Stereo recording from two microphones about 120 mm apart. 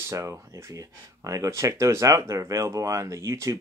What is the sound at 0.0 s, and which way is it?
Speech, 25° right (ahead or behind).